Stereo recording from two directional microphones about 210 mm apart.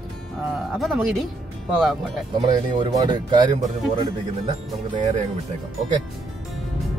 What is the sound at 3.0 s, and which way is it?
Speech, 20° right (ahead or behind).